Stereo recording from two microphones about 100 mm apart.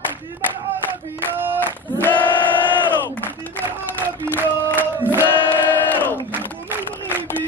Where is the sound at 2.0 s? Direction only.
15° left (ahead or behind).